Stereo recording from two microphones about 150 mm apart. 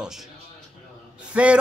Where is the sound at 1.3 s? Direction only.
10° right (ahead or behind).